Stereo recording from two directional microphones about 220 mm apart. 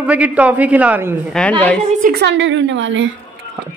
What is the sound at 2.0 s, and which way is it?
A woman's voice, 45° right (ahead or behind).